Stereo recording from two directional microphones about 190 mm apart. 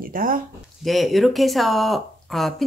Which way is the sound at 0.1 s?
45° right (ahead or behind).